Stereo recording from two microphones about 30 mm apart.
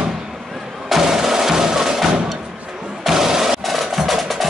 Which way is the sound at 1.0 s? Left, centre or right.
Centre.